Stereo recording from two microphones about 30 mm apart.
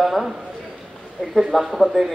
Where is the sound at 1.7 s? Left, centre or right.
Centre.